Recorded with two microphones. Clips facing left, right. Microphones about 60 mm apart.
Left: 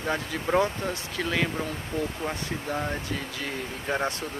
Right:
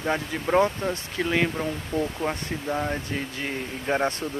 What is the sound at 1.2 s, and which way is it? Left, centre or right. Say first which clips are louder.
Speech: right 3 dB; centre.